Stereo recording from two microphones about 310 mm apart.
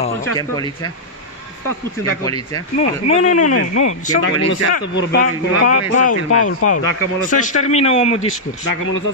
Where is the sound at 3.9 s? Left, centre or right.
Left.